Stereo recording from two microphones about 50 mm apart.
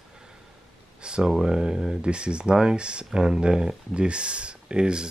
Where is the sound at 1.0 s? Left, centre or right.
Centre.